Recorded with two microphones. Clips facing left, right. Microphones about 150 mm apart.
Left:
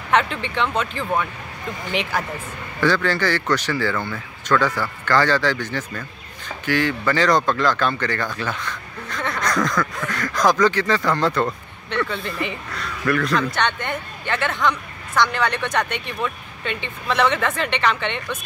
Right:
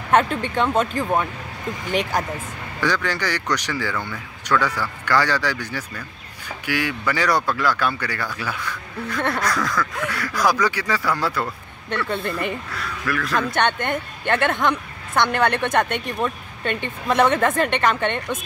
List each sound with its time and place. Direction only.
0.1 s speech: 45° right (ahead or behind)
2.8 s speech: 15° right (ahead or behind)
12.1 s speech: 55° right (ahead or behind)
12.7 s speech: centre (ahead or behind)
13.4 s speech: 50° right (ahead or behind)